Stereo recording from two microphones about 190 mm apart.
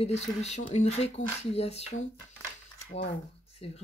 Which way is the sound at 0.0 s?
35° left (ahead or behind).